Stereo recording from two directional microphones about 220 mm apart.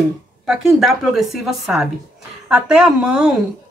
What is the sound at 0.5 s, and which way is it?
A woman's voice, centre (ahead or behind).